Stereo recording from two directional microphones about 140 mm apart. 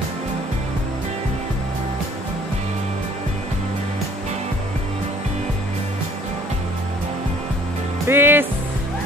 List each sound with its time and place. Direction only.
8.1 s music: 15° right (ahead or behind)